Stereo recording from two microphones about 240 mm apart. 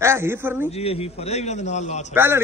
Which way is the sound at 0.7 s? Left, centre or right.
Left.